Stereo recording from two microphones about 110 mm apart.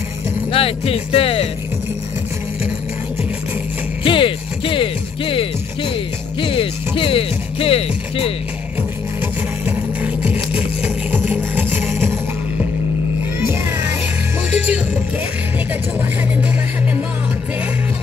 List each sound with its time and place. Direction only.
0.5 s speech: 60° left (ahead or behind)
4.0 s speech: 55° left (ahead or behind)
9.7 s vehicle: 15° right (ahead or behind)